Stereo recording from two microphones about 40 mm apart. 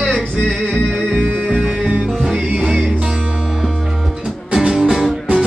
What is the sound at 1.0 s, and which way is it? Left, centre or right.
Music, right.